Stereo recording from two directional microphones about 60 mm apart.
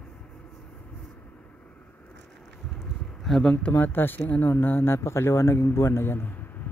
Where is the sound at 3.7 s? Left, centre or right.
Left.